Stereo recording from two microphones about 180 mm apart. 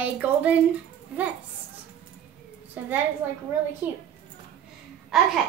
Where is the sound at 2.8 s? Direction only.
10° right (ahead or behind).